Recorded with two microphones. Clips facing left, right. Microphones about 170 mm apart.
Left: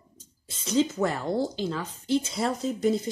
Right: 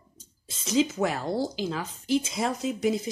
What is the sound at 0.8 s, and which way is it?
A woman's voice, 15° right (ahead or behind).